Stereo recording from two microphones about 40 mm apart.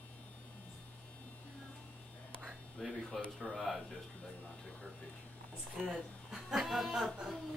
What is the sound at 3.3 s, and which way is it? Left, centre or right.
Speech, centre.